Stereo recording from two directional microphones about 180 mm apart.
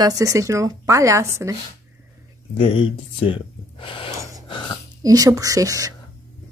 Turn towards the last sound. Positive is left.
turn(degrees=-20)  # may be behind; listen again after turning